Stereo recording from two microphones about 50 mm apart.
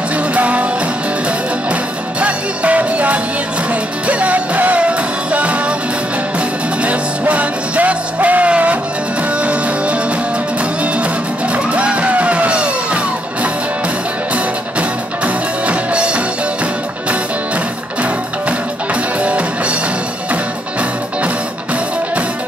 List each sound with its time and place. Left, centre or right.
0.3 s music: right
1.7 s music: right
6.8 s music: right
11.5 s music: right
19.2 s music: right